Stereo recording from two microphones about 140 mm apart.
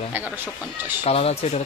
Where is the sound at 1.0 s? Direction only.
45° left (ahead or behind).